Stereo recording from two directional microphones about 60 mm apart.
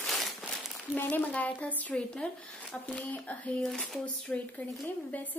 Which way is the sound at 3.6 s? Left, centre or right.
Centre.